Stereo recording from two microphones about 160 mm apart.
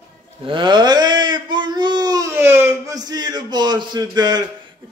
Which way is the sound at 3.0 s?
25° right (ahead or behind).